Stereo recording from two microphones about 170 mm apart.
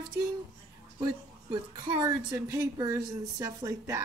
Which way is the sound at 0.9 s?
25° right (ahead or behind).